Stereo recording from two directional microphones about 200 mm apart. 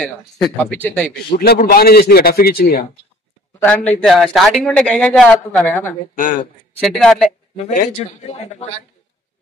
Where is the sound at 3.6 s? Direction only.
5° left (ahead or behind).